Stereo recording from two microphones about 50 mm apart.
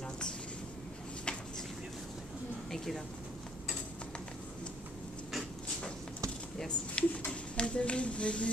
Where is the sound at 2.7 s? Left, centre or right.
Centre.